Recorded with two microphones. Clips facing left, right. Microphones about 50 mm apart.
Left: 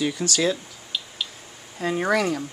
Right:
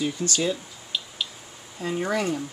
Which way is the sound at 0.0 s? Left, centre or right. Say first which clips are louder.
Left 3 dB; left.